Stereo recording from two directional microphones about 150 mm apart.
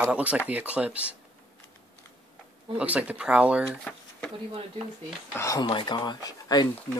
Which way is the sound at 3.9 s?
10° left (ahead or behind).